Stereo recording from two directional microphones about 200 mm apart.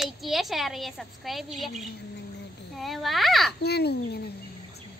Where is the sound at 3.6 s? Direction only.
55° left (ahead or behind).